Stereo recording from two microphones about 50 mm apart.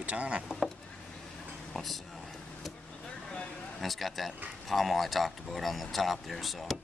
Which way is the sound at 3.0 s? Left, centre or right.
Centre.